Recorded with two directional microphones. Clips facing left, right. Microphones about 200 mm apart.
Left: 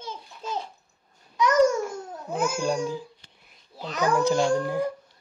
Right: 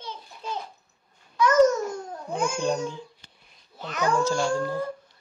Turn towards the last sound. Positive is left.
turn(degrees=15)  # may be behind; listen again after turning